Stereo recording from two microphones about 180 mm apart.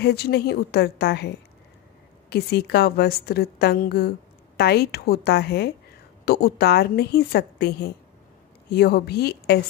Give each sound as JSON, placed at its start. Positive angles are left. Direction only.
{"t": 0.0, "sound": "a woman's voice", "side_deg": 65}